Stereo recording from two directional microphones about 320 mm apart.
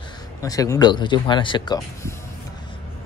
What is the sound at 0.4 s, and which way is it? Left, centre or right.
Speech, centre.